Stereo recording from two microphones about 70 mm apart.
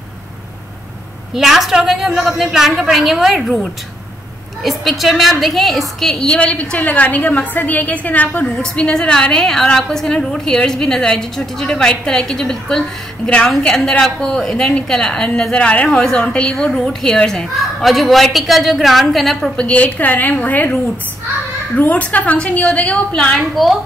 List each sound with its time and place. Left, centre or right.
1.3 s a woman's voice: centre
19.5 s a woman's voice: centre
21.7 s a woman's voice: left
23.5 s a woman's voice: centre